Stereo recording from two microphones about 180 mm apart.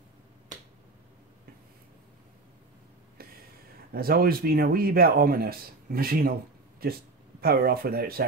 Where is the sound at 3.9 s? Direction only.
55° right (ahead or behind).